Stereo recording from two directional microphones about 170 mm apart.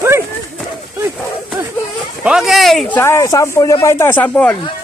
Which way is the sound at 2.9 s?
15° left (ahead or behind).